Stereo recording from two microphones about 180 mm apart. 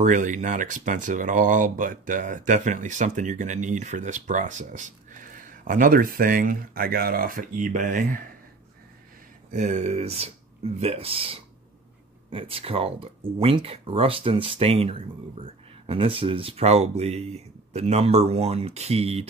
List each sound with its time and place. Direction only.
0.0 s speech: 45° right (ahead or behind)
9.5 s speech: 40° right (ahead or behind)